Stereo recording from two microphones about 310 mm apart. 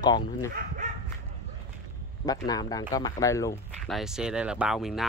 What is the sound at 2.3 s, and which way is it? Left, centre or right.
Speech, centre.